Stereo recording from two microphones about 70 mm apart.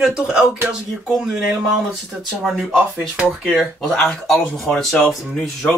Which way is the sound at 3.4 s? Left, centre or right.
Centre.